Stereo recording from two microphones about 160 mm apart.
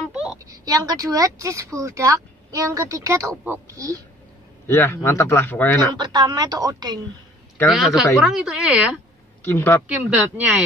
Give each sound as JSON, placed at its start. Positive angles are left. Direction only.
{"t": 0.1, "sound": "a sound", "side_deg": -5}
{"t": 0.7, "sound": "speech", "side_deg": -25}
{"t": 4.6, "sound": "speech", "side_deg": 15}
{"t": 5.9, "sound": "speech", "side_deg": -25}
{"t": 7.6, "sound": "a woman's voice", "side_deg": 0}
{"t": 9.4, "sound": "speech", "side_deg": 15}
{"t": 9.8, "sound": "speech", "side_deg": -10}